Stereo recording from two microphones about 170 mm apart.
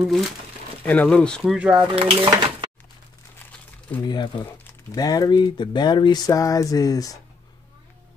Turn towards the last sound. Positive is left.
turn(degrees=20)  # may be behind; listen again after turning